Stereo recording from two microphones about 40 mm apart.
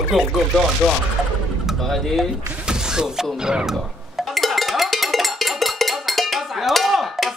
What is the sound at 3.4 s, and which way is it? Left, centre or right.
Music, centre.